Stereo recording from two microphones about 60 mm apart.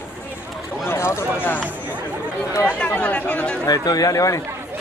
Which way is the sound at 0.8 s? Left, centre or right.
Left.